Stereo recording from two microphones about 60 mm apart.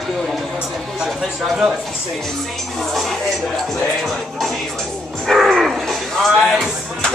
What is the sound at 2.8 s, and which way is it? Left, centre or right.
Speech, centre.